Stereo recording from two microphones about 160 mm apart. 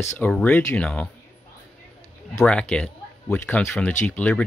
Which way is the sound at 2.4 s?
5° left (ahead or behind).